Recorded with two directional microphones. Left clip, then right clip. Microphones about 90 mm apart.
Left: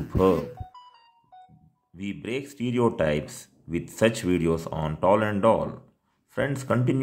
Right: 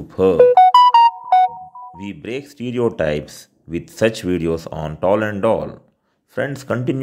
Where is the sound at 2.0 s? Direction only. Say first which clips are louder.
Right 3 dB; 25° right (ahead or behind).